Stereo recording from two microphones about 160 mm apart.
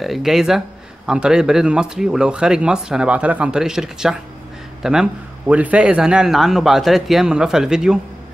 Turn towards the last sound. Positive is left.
turn(degrees=-5)  # may be behind; listen again after turning